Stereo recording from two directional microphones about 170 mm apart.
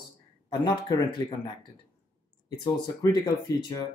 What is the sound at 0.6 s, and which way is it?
Speech, 25° left (ahead or behind).